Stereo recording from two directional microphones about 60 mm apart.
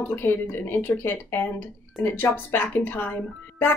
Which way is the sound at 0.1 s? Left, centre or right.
Left.